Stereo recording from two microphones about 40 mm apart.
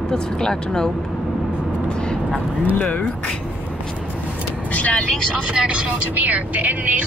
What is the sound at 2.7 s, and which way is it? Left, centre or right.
Speech, left.